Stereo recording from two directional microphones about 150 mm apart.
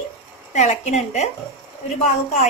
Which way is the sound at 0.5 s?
50° left (ahead or behind).